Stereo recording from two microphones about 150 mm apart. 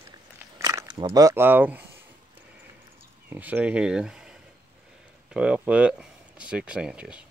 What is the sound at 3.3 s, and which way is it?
Speech, 10° right (ahead or behind).